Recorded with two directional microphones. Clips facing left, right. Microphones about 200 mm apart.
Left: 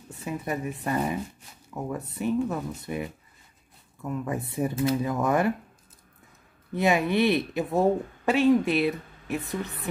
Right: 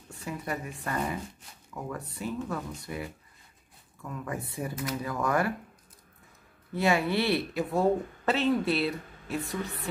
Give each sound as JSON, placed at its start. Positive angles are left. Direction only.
{"t": 0.2, "sound": "speech", "side_deg": 20}
{"t": 6.7, "sound": "speech", "side_deg": 20}